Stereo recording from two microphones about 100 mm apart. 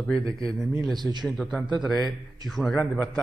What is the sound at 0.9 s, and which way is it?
Speech, 45° right (ahead or behind).